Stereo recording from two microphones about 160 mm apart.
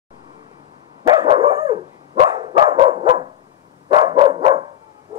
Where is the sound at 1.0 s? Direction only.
30° right (ahead or behind).